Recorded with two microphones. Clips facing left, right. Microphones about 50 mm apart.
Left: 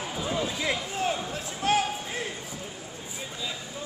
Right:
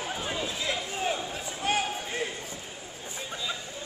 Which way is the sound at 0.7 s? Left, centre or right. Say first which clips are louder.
Left 1 dB; centre.